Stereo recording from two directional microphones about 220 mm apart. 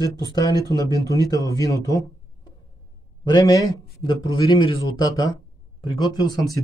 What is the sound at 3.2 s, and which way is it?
A man's voice, 15° left (ahead or behind).